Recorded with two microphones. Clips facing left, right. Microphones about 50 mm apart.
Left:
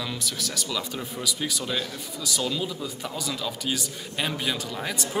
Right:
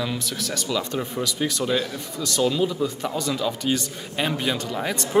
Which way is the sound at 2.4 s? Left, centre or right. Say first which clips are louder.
Right 9 dB; centre.